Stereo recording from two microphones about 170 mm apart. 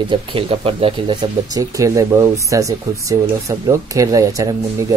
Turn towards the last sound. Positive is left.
turn(degrees=-20)  # may be behind; listen again after turning